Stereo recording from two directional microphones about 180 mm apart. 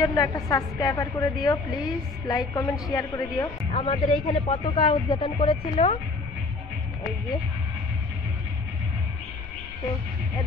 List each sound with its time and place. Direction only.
0.0 s a woman's voice: 20° left (ahead or behind)
3.8 s speech: 30° left (ahead or behind)